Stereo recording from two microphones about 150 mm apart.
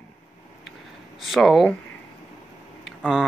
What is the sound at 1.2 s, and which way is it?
Speech, centre (ahead or behind).